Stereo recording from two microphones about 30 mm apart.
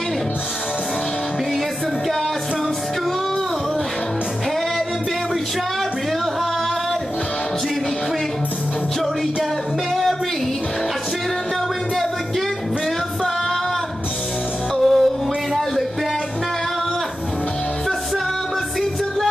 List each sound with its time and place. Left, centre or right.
14.8 s music: centre